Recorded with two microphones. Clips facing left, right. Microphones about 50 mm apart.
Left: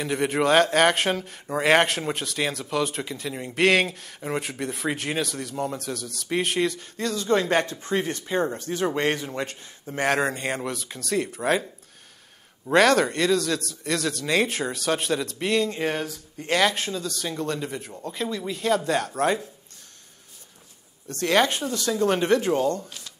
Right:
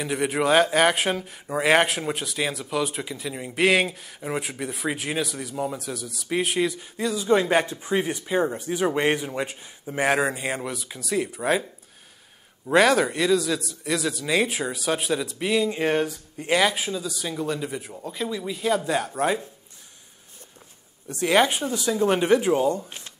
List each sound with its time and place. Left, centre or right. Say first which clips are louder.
0.0 s speech: left 1 dB; centre
12.6 s speech: even; centre
21.1 s speech: right 1 dB; centre
22.8 s speech: right 1 dB; right